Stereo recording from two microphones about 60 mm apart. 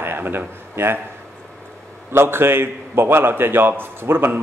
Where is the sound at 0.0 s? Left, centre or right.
Right.